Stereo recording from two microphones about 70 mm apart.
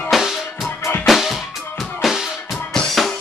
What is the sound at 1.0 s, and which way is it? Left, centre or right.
Music, centre.